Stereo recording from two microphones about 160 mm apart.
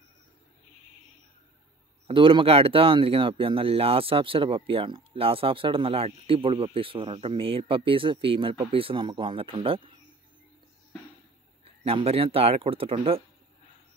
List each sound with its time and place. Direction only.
2.0 s speech: 30° right (ahead or behind)
11.8 s speech: 35° right (ahead or behind)